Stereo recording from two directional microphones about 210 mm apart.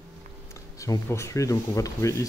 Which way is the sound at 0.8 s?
15° left (ahead or behind).